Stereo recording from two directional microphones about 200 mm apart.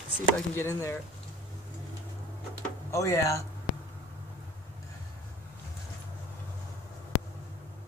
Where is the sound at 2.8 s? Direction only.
15° left (ahead or behind).